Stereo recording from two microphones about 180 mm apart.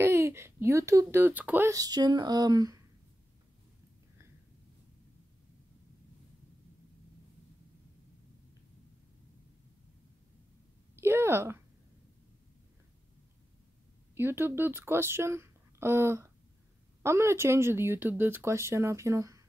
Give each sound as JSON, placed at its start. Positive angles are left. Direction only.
{"t": 0.0, "sound": "speech", "side_deg": -15}
{"t": 11.0, "sound": "a woman's voice", "side_deg": -15}
{"t": 14.1, "sound": "speech", "side_deg": -10}